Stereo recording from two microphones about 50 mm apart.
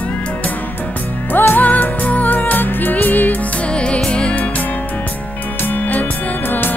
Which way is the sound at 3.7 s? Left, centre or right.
Left.